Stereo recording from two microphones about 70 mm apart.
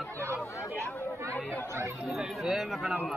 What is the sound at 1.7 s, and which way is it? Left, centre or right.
Chatter, right.